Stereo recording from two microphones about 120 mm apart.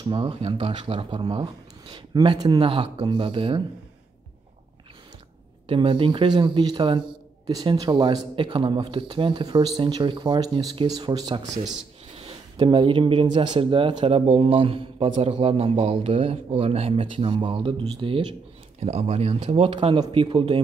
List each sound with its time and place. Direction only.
0.0 s speech: 45° right (ahead or behind)
2.6 s speech: 50° right (ahead or behind)
5.7 s speech: 45° right (ahead or behind)
12.5 s speech: 40° right (ahead or behind)
18.8 s speech: 60° right (ahead or behind)